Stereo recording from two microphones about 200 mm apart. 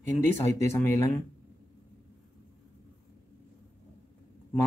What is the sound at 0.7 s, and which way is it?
Speech, 15° left (ahead or behind).